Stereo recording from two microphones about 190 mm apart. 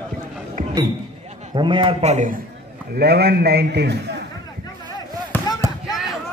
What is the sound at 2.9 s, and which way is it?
A man's voice, 60° right (ahead or behind).